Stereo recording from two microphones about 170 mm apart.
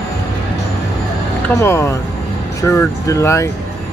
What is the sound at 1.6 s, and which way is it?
Speech, 15° left (ahead or behind).